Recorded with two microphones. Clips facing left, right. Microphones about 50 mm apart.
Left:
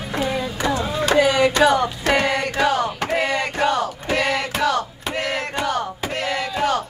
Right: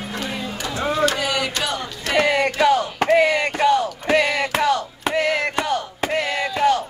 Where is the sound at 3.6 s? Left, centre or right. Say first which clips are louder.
Right 4 dB; left.